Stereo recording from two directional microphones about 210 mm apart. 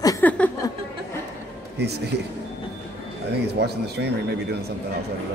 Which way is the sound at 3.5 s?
50° right (ahead or behind).